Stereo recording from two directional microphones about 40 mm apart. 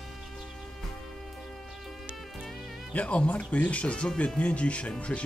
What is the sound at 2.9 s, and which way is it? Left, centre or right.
Speech, left.